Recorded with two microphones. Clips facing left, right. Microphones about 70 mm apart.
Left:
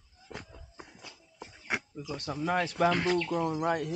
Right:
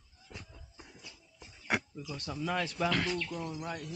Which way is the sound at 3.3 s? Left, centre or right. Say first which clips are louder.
Left 10 dB; left.